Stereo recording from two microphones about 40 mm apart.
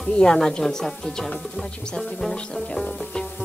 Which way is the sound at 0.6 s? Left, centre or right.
Centre.